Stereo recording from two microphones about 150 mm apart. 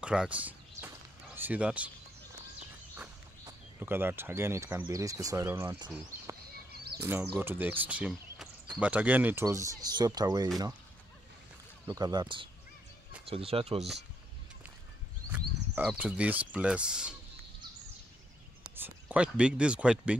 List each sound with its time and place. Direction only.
0.0 s a sound: 5° right (ahead or behind)
3.8 s speech: 15° right (ahead or behind)
7.0 s speech: 15° right (ahead or behind)
11.9 s speech: 25° right (ahead or behind)
15.3 s speech: 10° right (ahead or behind)
18.8 s speech: 10° right (ahead or behind)